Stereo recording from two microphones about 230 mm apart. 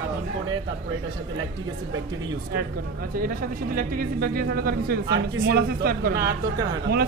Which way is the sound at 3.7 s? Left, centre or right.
Right.